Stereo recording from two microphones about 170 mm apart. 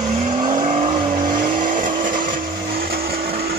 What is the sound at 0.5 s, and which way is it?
Vehicle, 45° right (ahead or behind).